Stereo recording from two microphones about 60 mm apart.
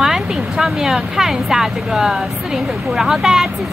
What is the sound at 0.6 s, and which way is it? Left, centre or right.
Speech, centre.